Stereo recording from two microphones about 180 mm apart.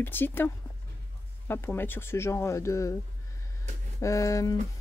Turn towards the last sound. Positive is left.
turn(degrees=20)  # may be behind; listen again after turning